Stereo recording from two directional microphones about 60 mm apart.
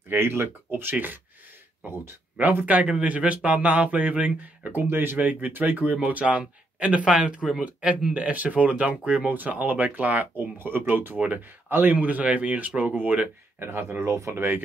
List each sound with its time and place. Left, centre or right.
0.1 s speech: right
2.6 s speech: right
4.7 s speech: right
13.6 s speech: right
14.1 s speech: right